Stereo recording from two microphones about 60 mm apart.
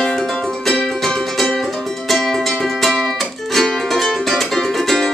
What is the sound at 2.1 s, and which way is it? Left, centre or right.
Music, centre.